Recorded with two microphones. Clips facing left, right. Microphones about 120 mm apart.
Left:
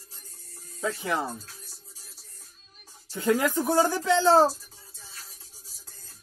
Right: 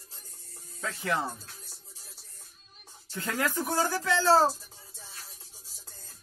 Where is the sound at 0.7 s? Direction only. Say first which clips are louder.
Left 3 dB; 20° left (ahead or behind).